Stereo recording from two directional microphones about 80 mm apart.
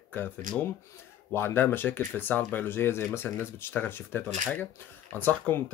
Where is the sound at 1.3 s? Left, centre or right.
Left.